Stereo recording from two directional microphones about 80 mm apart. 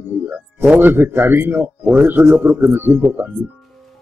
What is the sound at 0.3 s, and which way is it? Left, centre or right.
Speech, centre.